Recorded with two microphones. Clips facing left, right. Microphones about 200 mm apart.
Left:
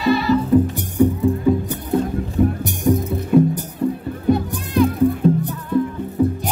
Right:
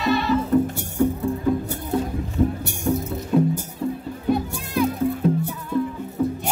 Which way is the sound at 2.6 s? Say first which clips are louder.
Left 5 dB; 15° left (ahead or behind).